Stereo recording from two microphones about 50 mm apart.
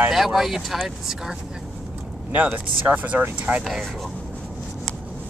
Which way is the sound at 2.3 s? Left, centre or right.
Right.